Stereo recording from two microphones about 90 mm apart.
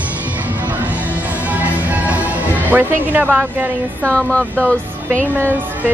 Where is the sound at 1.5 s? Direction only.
15° right (ahead or behind).